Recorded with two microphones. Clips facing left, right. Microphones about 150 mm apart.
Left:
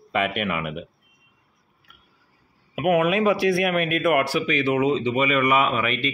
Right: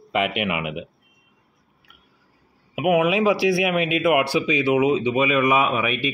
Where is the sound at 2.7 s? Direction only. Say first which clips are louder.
Right 1 dB; 10° right (ahead or behind).